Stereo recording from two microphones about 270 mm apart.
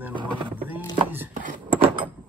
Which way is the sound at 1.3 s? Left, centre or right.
Right.